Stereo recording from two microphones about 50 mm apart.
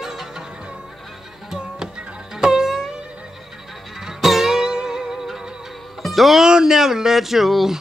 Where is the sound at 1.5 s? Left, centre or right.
Centre.